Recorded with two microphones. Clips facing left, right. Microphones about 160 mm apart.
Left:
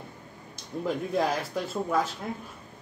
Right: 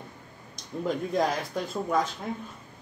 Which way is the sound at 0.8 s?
5° left (ahead or behind).